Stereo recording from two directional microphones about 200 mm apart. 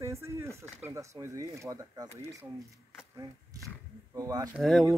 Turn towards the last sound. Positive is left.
turn(degrees=0)  # may be behind; listen again after turning